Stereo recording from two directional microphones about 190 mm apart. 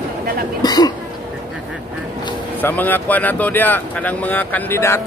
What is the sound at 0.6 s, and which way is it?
Cough, 20° left (ahead or behind).